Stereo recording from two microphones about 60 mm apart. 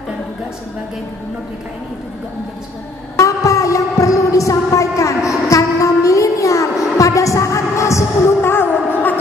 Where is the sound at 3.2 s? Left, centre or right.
Left.